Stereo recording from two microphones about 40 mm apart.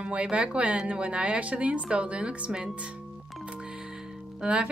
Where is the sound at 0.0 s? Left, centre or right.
Right.